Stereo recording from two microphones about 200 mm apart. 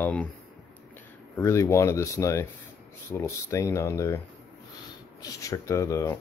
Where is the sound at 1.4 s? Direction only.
15° left (ahead or behind).